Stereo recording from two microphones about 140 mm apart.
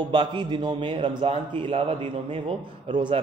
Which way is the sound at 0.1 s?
35° right (ahead or behind).